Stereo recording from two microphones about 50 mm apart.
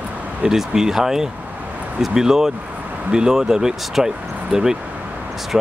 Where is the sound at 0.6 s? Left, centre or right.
Centre.